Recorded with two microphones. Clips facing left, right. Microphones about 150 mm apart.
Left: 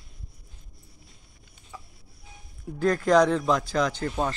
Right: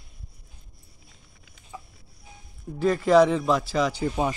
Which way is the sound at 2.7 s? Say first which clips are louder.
Right 2 dB; 5° right (ahead or behind).